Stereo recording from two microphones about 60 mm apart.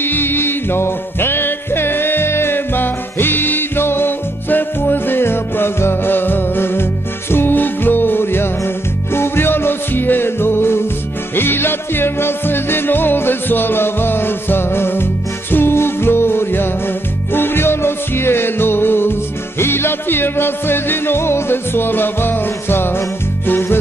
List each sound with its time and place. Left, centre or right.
0.0 s music: left